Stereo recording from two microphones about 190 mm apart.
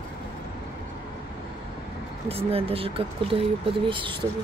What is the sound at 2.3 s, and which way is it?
Speech, 30° right (ahead or behind).